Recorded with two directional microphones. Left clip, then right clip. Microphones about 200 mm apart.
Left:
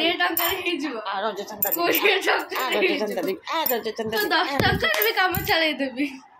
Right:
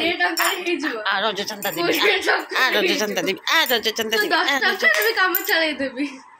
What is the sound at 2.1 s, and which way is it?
Speech, 15° left (ahead or behind).